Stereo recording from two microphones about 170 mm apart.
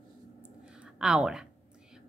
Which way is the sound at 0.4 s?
5° right (ahead or behind).